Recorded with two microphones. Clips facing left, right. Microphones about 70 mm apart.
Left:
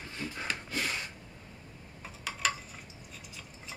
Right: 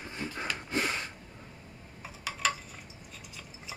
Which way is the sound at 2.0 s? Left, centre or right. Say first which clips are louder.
Right 1 dB; centre.